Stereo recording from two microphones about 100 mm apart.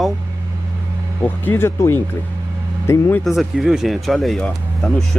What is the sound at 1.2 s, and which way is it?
Speech, 20° left (ahead or behind).